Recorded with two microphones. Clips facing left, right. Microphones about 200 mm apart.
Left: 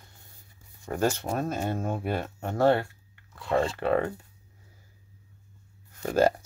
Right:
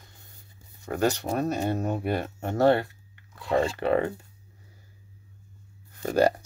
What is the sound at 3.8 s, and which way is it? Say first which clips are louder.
Speech: right 1 dB; 20° right (ahead or behind).